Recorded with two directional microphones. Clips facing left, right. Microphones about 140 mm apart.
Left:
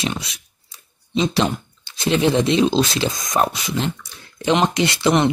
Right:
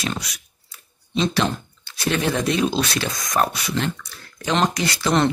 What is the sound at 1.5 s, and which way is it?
Speech, 25° left (ahead or behind).